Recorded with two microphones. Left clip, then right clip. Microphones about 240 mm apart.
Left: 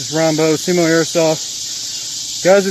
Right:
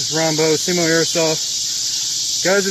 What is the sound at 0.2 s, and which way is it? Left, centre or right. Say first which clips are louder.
Speech: left 3 dB; left.